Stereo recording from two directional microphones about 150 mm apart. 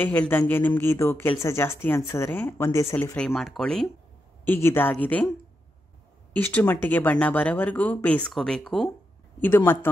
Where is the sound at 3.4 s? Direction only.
5° left (ahead or behind).